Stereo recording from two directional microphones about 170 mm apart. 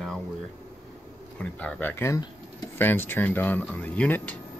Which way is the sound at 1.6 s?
15° left (ahead or behind).